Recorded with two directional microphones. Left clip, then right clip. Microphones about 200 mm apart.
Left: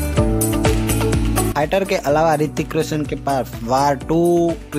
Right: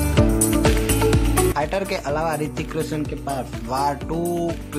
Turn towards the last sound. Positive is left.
turn(degrees=35)  # may be behind; listen again after turning